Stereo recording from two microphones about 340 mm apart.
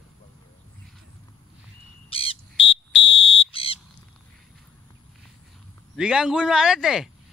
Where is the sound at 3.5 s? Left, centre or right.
Centre.